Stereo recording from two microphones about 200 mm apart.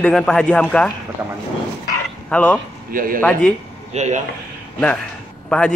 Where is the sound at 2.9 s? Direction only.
45° right (ahead or behind).